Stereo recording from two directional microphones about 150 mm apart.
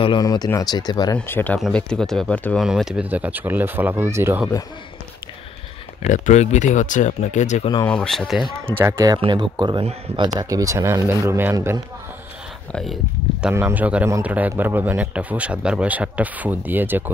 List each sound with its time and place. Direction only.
0.0 s speech: 30° left (ahead or behind)
1.1 s speech: 15° left (ahead or behind)
2.6 s speech: 5° right (ahead or behind)
6.0 s speech: 55° left (ahead or behind)
7.8 s speech: 5° left (ahead or behind)
8.7 s speech: 15° right (ahead or behind)
9.2 s speech: 30° right (ahead or behind)
12.7 s speech: centre (ahead or behind)
13.5 s speech: 15° right (ahead or behind)